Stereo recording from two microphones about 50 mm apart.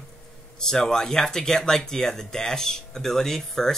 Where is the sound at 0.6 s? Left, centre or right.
Centre.